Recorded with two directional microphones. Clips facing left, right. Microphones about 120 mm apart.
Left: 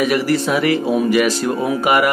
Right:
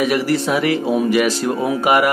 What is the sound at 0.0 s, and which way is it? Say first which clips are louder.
Speech: left 1 dB; 25° right (ahead or behind).